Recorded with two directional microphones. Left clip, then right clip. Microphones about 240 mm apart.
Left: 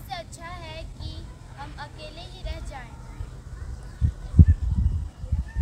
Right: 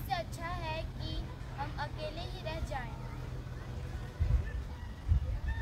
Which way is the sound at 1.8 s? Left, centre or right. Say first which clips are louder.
Even; centre.